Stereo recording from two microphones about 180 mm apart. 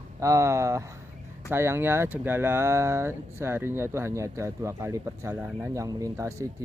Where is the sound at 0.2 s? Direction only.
15° right (ahead or behind).